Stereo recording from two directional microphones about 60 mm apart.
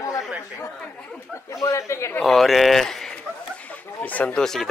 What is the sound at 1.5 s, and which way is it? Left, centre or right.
Speech, left.